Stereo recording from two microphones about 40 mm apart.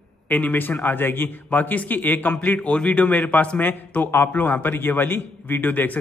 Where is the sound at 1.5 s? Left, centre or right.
Left.